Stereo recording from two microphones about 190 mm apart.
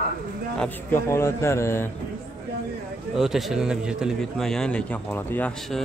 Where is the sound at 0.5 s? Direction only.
10° left (ahead or behind).